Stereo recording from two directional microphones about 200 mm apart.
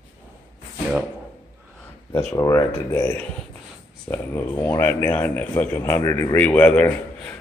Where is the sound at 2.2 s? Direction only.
15° left (ahead or behind).